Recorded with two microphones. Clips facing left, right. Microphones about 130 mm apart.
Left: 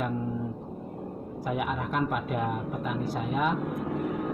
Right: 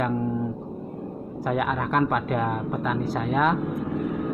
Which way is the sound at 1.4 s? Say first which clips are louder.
Right 5 dB; 90° right.